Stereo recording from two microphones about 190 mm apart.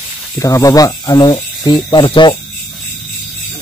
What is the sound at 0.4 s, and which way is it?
Speech, 20° left (ahead or behind).